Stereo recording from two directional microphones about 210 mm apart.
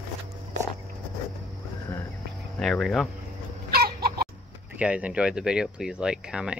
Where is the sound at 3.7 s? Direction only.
50° right (ahead or behind).